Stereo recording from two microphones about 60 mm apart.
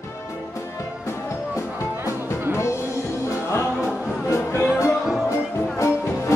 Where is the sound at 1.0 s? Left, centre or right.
Left.